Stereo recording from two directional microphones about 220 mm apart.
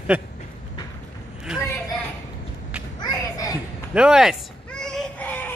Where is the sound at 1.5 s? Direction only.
Centre (ahead or behind).